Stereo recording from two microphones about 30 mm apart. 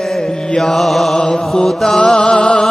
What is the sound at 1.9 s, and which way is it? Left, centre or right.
Music, left.